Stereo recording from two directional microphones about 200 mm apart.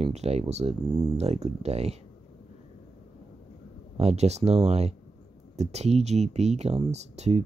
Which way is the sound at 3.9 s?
30° right (ahead or behind).